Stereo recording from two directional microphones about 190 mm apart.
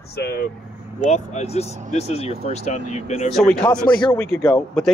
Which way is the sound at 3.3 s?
5° left (ahead or behind).